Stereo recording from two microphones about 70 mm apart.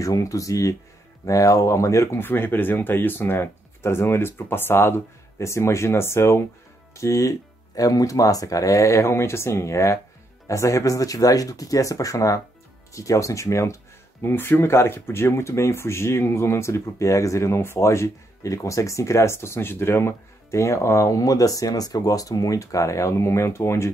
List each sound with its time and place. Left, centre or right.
0.0 s speech: left
2.1 s speech: left
14.2 s speech: left